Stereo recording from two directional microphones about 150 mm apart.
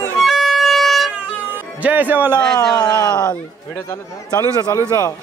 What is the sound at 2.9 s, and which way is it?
Speech, 10° left (ahead or behind).